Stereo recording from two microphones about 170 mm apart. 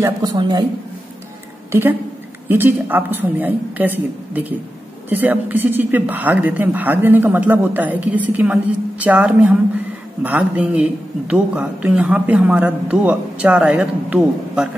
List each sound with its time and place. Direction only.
0.0 s a woman's voice: 25° right (ahead or behind)
1.7 s a woman's voice: 15° right (ahead or behind)